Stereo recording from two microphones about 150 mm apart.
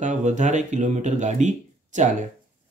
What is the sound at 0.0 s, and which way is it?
Speech, 55° right (ahead or behind).